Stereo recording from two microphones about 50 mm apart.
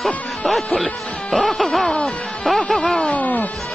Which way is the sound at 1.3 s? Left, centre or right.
Centre.